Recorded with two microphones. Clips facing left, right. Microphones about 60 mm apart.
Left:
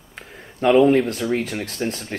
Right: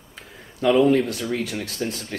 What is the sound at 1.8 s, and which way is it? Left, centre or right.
Speech, left.